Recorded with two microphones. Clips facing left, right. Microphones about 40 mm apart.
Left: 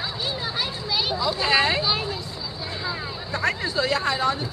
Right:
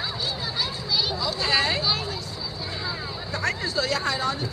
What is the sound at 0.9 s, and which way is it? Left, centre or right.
Speech, centre.